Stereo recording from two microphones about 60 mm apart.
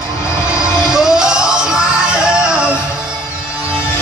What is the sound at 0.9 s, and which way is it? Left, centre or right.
Music, centre.